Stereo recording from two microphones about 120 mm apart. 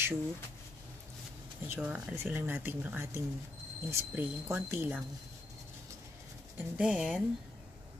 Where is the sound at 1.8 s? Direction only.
10° right (ahead or behind).